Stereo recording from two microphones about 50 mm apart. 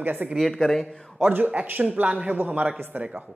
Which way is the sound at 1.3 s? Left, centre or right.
Right.